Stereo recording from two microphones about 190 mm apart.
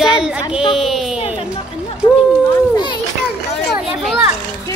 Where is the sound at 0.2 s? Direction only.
5° right (ahead or behind).